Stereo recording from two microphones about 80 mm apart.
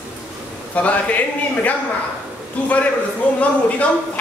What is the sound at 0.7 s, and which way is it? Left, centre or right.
A man's voice, centre.